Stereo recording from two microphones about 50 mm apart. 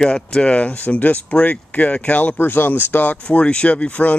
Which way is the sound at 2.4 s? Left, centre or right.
Left.